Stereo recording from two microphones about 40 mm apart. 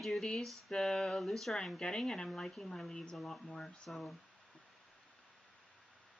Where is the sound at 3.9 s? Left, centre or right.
Centre.